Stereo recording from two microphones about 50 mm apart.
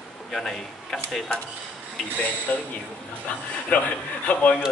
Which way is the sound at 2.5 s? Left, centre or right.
Left.